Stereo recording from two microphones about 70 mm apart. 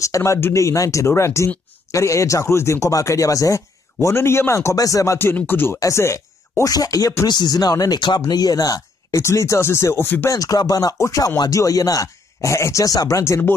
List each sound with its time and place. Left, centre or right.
0.0 s speech: left
4.7 s speech: left
5.2 s speech: left
5.8 s speech: left
6.7 s speech: left
7.2 s speech: left
8.3 s speech: left
9.2 s speech: left
10.0 s speech: left
10.3 s speech: left
13.2 s speech: left